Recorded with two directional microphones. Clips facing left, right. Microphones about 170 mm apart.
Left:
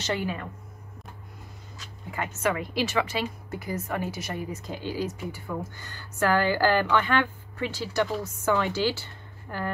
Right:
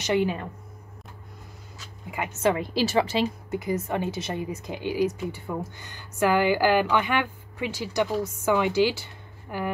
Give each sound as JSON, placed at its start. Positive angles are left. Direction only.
{"t": 0.0, "sound": "a woman's voice", "side_deg": -20}
{"t": 2.0, "sound": "a woman's voice", "side_deg": -15}
{"t": 3.4, "sound": "speech", "side_deg": -20}